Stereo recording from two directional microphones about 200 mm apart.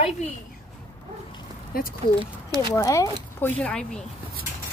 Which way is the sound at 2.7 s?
15° left (ahead or behind).